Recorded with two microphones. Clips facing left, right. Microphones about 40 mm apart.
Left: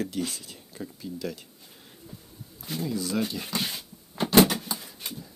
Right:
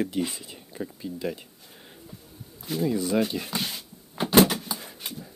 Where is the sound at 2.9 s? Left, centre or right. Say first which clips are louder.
Right 4 dB; right.